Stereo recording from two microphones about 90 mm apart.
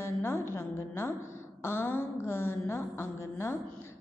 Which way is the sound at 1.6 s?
25° left (ahead or behind).